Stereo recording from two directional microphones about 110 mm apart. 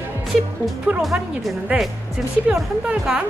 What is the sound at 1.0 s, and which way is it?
Speech, centre (ahead or behind).